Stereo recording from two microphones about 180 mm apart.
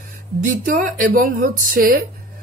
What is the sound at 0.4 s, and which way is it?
Speech, 50° right (ahead or behind).